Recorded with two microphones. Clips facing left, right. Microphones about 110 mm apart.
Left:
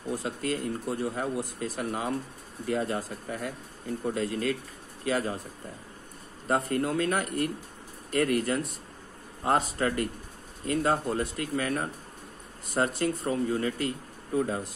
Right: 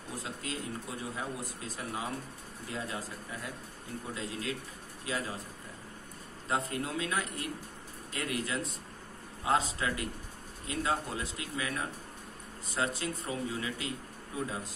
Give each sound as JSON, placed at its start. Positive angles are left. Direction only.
{"t": 0.1, "sound": "a man's voice", "side_deg": 65}
{"t": 6.4, "sound": "a man's voice", "side_deg": 55}